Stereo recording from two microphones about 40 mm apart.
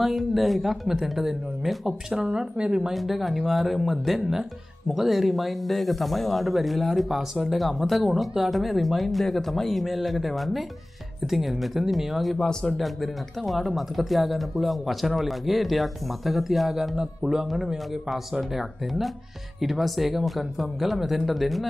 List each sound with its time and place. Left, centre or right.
0.0 s speech: centre
2.1 s speech: right
2.9 s speech: centre
16.9 s speech: centre